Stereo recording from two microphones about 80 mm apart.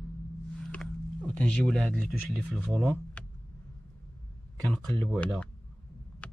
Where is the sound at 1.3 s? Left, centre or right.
Centre.